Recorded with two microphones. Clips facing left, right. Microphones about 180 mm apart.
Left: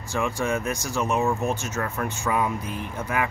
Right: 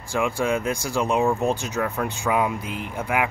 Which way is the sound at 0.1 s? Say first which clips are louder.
Right 3 dB; 10° right (ahead or behind).